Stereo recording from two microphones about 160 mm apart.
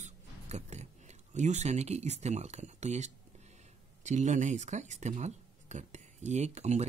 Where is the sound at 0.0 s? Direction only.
45° right (ahead or behind).